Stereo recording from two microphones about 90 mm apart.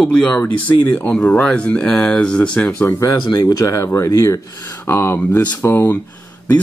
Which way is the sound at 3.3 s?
50° left (ahead or behind).